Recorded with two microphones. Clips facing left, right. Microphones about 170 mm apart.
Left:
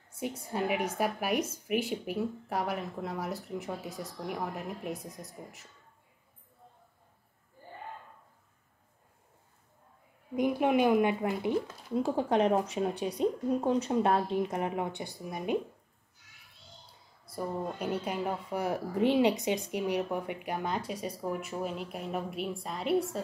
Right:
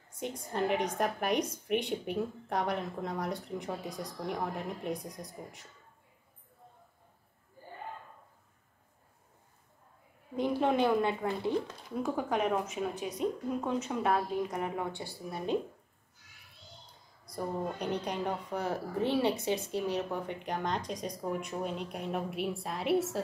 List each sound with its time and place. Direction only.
0.1 s a woman's voice: 10° left (ahead or behind)
10.3 s a woman's voice: 10° left (ahead or behind)
11.9 s speech: 30° left (ahead or behind); by 15.5 s 15° left (ahead or behind)
17.2 s a woman's voice: 5° left (ahead or behind)